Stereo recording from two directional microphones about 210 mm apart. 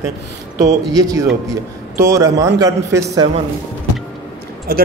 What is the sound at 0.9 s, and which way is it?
Speech, 15° right (ahead or behind).